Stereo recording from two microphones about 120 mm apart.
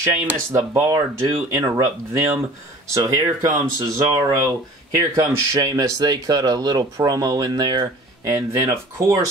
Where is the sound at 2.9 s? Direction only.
30° right (ahead or behind).